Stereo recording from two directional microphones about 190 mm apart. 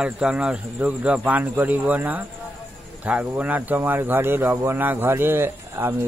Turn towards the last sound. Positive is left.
turn(degrees=-10)  # may be behind; listen again after turning